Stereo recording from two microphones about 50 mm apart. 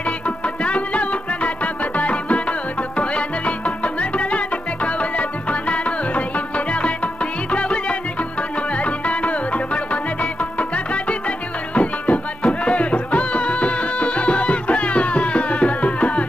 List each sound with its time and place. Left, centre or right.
0.7 s music: left
10.6 s music: left